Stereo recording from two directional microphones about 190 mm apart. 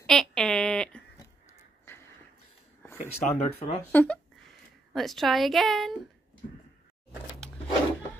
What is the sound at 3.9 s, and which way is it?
A woman's voice, 5° left (ahead or behind).